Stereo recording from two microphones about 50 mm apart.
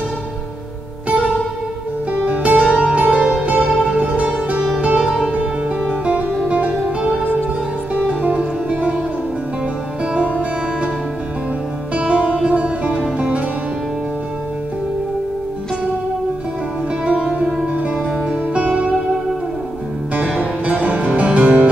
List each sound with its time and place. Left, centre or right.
2.2 s music: right
10.1 s music: right
11.9 s music: right
20.3 s music: right